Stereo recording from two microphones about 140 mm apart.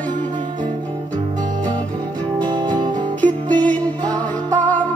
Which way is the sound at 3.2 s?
10° left (ahead or behind).